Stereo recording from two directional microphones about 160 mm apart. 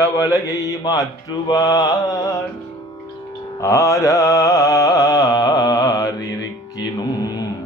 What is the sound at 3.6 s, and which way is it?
Mantra, 20° left (ahead or behind).